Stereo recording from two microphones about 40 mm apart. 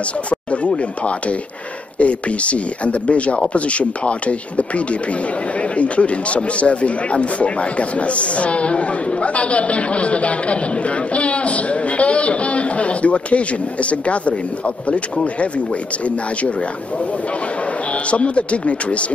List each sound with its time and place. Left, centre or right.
2.0 s speech: left
18.1 s speech: left